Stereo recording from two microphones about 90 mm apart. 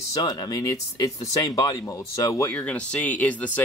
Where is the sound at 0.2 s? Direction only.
45° left (ahead or behind).